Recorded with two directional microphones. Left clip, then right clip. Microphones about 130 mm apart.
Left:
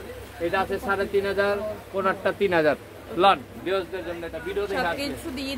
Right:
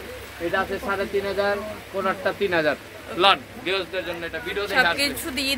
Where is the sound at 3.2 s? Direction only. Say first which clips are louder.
Right 1 dB; 90° left.